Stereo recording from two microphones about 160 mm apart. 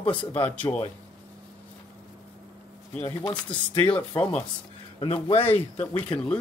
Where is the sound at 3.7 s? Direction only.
30° left (ahead or behind).